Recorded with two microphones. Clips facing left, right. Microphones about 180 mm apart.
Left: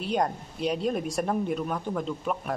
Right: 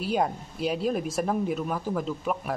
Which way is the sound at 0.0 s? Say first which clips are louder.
Right 1 dB; 5° right (ahead or behind).